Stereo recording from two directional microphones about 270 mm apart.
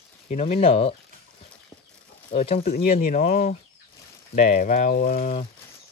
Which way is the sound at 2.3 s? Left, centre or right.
Left.